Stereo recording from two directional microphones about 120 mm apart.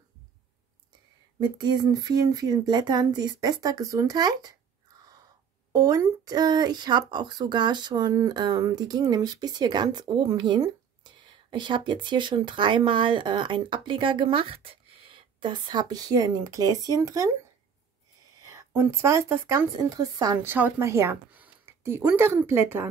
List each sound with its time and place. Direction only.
1.4 s speech: 35° right (ahead or behind)
5.7 s speech: 30° right (ahead or behind)
18.5 s a woman's voice: 25° right (ahead or behind)
20.4 s a woman's voice: 15° right (ahead or behind)